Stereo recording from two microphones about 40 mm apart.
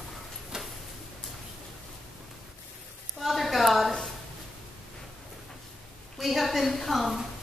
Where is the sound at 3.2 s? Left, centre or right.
Centre.